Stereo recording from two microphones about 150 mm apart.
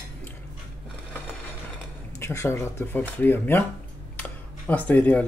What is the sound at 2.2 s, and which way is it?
Speech, 15° left (ahead or behind).